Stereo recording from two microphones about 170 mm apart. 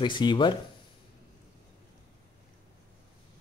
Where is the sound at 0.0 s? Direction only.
25° left (ahead or behind).